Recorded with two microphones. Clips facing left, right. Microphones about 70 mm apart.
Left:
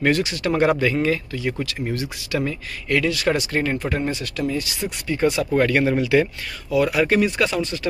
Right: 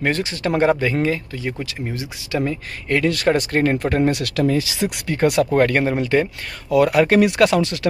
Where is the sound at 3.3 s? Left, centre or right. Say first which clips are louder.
Right 4 dB; right.